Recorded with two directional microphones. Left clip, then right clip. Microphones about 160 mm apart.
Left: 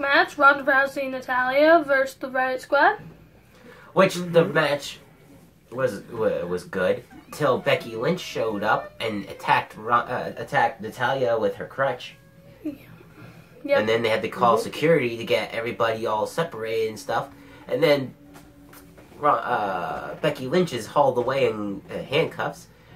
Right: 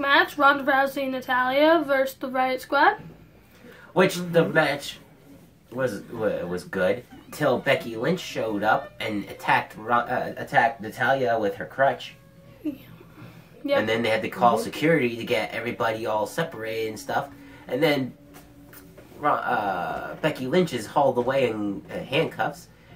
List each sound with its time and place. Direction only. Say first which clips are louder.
0.0 s a woman's voice: left 1 dB; 15° right (ahead or behind)
3.9 s speech: left 2 dB; centre (ahead or behind)
13.7 s speech: left 2 dB; centre (ahead or behind)
19.2 s speech: left 2 dB; centre (ahead or behind)